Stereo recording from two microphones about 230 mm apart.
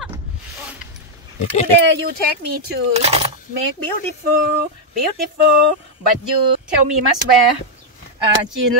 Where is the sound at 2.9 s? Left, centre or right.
Right.